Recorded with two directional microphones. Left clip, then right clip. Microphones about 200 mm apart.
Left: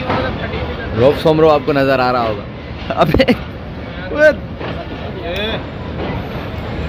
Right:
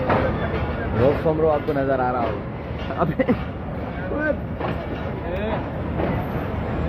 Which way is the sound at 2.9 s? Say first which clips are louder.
Left 10 dB; 75° left (ahead or behind).